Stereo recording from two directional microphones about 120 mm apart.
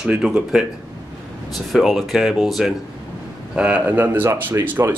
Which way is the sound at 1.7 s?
Centre (ahead or behind).